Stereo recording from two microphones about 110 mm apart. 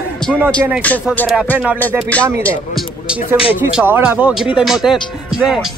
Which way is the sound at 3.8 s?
15° right (ahead or behind).